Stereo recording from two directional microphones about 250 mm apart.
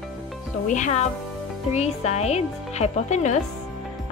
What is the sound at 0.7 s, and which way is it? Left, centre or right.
Speech, left.